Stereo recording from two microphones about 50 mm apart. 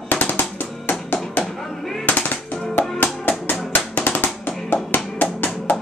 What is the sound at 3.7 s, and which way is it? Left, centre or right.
Music, left.